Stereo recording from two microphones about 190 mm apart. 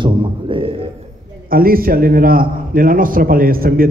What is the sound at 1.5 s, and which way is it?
A man's voice, 50° right (ahead or behind).